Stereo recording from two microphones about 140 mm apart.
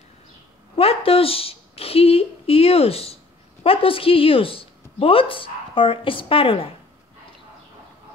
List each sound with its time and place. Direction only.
0.7 s a woman's voice: 45° left (ahead or behind)